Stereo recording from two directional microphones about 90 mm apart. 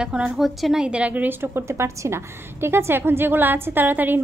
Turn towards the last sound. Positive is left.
turn(degrees=-20)  # may be behind; listen again after turning